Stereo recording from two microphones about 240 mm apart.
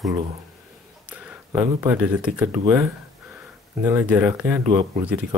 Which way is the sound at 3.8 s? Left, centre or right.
Centre.